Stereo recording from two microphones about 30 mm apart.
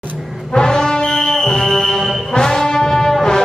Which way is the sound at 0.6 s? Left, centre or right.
Left.